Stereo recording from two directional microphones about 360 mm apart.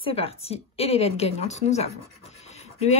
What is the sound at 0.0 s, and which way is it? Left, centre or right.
A woman's voice, centre.